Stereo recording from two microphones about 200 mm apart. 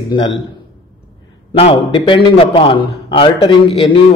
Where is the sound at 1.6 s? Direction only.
25° left (ahead or behind).